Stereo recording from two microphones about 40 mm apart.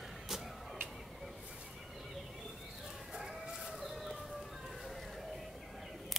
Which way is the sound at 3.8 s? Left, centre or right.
Centre.